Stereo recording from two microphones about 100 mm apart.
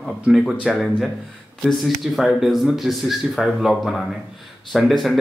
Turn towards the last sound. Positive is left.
turn(degrees=0)  # may be behind; listen again after turning